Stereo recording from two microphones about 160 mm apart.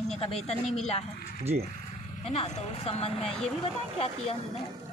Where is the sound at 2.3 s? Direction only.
45° left (ahead or behind).